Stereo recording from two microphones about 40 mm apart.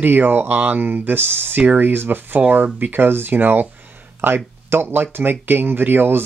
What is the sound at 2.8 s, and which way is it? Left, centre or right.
Speech, right.